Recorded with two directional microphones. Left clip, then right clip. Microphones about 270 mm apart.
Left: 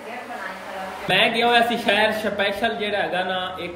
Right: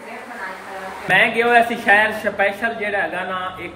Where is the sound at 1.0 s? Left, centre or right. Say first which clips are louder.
Right 3 dB; centre.